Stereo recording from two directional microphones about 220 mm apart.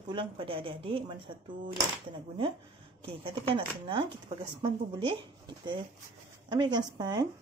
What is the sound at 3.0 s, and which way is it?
Speech, 25° right (ahead or behind).